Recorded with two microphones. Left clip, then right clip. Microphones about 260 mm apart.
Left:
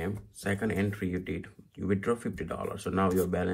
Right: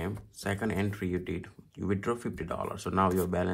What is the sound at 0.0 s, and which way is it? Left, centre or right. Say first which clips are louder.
Speech: left 1 dB; centre.